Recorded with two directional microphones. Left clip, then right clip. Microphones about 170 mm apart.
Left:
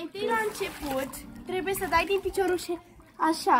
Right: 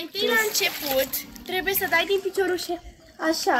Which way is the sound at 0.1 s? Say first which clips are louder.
Right 6 dB; 50° left (ahead or behind).